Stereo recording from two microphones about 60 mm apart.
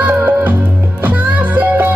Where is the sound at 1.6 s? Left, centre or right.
Right.